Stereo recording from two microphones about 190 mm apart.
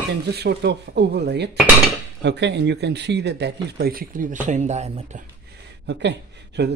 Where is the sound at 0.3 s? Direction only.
60° right (ahead or behind); by 5.2 s 35° right (ahead or behind).